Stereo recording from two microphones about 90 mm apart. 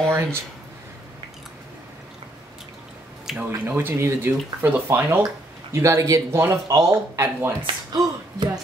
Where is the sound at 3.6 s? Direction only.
25° right (ahead or behind).